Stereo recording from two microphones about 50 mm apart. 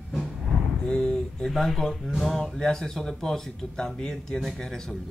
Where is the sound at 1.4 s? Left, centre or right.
Centre.